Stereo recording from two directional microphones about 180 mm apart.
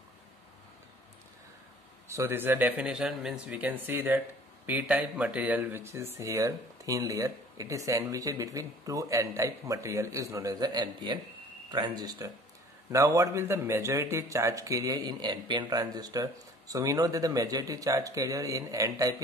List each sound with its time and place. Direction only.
2.0 s speech: 15° right (ahead or behind)